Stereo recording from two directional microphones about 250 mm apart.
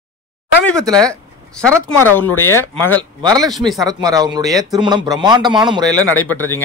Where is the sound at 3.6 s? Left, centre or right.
Centre.